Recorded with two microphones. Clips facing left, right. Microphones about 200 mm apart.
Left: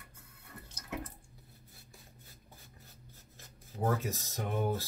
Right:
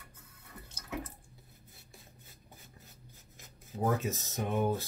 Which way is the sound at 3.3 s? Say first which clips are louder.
Right 3 dB; 20° right (ahead or behind).